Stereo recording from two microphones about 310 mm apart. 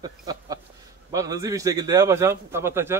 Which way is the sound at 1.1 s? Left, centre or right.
Centre.